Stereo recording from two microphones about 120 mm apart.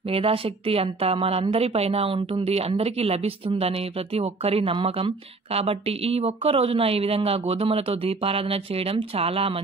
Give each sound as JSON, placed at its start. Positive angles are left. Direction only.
{"t": 0.1, "sound": "a woman's voice", "side_deg": -50}